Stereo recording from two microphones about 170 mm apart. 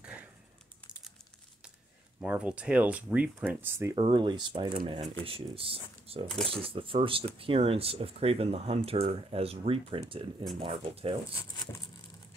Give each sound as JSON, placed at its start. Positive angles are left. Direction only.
{"t": 2.1, "sound": "speech", "side_deg": -10}
{"t": 3.9, "sound": "speech", "side_deg": -30}